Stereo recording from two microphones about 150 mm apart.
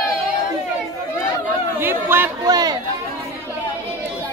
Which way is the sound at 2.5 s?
25° right (ahead or behind).